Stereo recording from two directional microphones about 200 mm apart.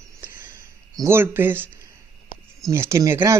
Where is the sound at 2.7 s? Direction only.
15° right (ahead or behind).